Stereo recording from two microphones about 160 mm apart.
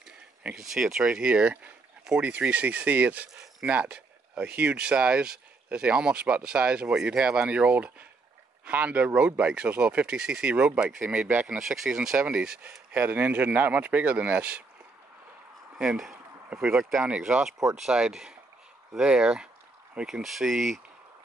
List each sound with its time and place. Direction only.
0.4 s speech: 5° right (ahead or behind)
15.8 s speech: 5° right (ahead or behind)